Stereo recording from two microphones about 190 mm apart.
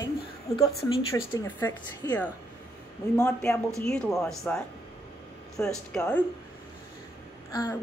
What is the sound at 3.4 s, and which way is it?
Speech, 5° left (ahead or behind).